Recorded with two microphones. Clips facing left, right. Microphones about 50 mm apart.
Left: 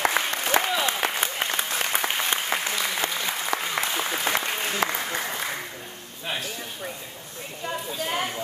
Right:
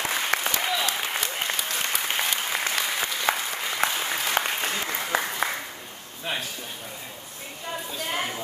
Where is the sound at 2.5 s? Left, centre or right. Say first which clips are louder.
Left 2 dB; left.